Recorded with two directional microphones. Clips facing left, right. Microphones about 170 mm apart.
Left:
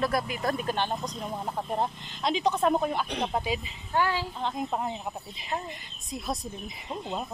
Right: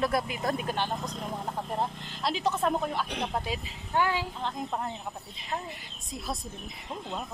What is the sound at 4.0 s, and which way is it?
Speech, 15° right (ahead or behind).